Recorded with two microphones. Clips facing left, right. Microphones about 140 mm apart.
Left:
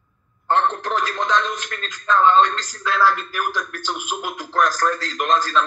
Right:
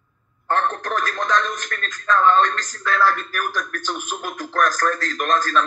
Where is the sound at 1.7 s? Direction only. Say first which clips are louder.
Left 1 dB; 20° left (ahead or behind).